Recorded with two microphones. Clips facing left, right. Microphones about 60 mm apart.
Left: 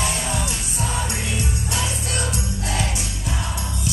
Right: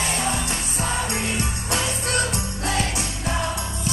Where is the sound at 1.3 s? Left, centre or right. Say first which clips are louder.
Right 1 dB; right.